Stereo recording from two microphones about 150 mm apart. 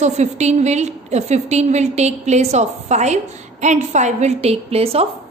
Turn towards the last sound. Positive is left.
turn(degrees=-40)  # may be behind; listen again after turning